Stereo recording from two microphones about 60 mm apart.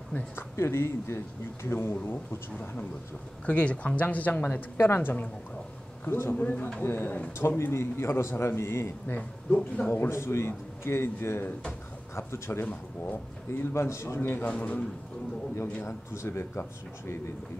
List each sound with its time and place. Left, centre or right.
0.4 s speech: left
3.4 s speech: left
4.7 s speech: left
6.3 s speech: left
6.8 s speech: left
9.0 s speech: left
9.8 s speech: left
12.6 s speech: left
13.5 s speech: left
15.8 s speech: left